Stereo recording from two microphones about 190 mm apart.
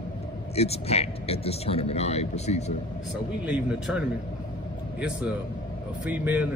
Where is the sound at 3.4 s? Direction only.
5° right (ahead or behind).